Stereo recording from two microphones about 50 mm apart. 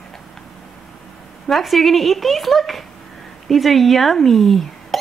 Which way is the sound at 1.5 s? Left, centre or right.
Centre.